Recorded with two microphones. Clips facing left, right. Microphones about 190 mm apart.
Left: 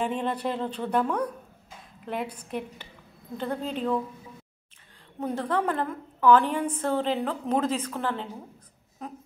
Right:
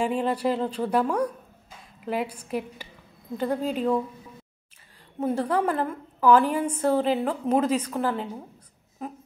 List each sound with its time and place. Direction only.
0.0 s speech: 5° right (ahead or behind)
5.2 s a woman's voice: 5° right (ahead or behind)